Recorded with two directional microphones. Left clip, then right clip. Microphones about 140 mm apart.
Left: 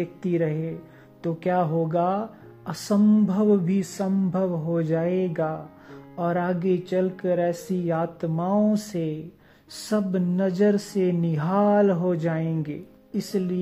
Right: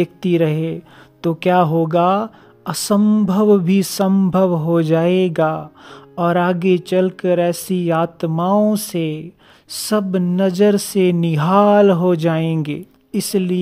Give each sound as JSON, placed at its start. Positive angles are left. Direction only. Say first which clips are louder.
{"t": 0.0, "sound": "a woman's voice", "louder": "right 9 dB", "side_deg": -45}